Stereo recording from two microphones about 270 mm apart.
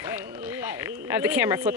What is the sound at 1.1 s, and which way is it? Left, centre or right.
Speech, centre.